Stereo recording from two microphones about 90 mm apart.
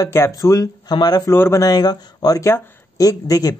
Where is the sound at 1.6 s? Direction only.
45° left (ahead or behind).